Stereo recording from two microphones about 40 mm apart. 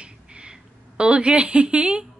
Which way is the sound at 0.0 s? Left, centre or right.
Right.